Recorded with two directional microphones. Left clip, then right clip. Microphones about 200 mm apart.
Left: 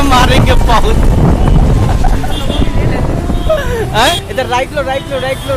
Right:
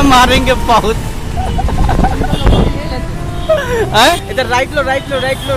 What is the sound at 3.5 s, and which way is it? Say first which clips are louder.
Speech: right 2 dB; 10° right (ahead or behind).